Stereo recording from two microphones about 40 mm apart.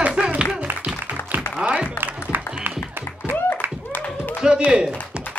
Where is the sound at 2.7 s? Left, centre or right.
Right.